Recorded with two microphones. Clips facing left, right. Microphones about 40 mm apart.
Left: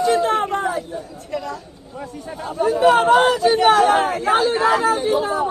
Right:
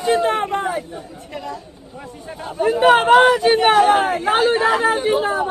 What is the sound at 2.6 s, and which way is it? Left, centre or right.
Speech, right.